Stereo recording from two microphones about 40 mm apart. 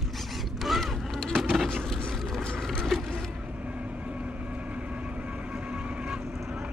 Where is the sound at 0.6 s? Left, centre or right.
Centre.